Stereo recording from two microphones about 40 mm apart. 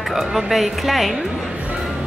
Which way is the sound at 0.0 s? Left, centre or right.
Centre.